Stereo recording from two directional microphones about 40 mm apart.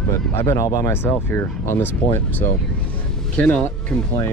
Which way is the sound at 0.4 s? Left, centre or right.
Left.